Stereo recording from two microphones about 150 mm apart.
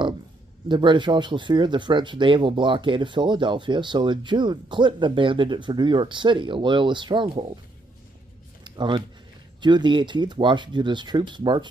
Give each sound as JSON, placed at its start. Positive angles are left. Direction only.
{"t": 0.7, "sound": "speech", "side_deg": -30}
{"t": 8.6, "sound": "speech", "side_deg": -30}